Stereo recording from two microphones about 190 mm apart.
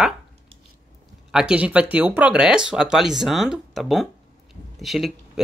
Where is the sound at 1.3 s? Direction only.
5° right (ahead or behind).